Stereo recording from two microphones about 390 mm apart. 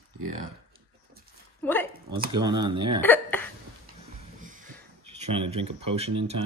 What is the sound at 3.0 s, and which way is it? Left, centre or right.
Hiccup, centre.